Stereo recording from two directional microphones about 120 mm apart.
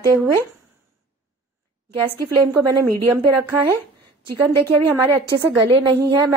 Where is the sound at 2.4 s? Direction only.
30° right (ahead or behind).